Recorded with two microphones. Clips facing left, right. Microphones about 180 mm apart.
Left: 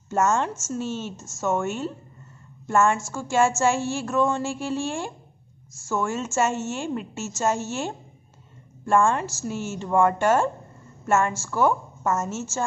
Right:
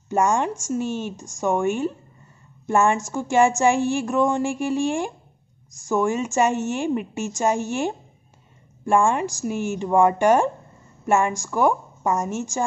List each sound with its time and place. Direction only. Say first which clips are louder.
0.1 s speech: right 2 dB; 15° right (ahead or behind)